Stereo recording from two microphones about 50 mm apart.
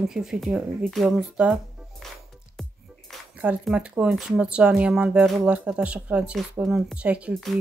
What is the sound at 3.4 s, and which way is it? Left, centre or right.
Speech, right.